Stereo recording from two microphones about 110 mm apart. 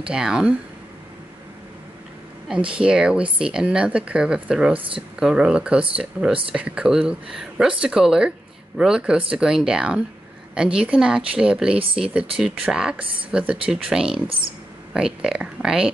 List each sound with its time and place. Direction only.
0.1 s speech: 5° right (ahead or behind)
2.4 s speech: 10° right (ahead or behind)
4.7 s speech: 55° right (ahead or behind)
5.2 s speech: 5° right (ahead or behind)